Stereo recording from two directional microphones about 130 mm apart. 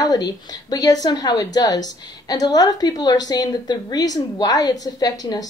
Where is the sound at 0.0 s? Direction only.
30° left (ahead or behind).